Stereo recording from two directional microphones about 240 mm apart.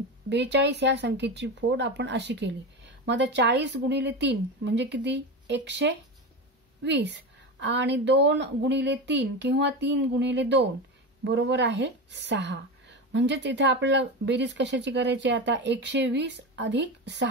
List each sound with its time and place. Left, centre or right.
0.3 s a woman's voice: right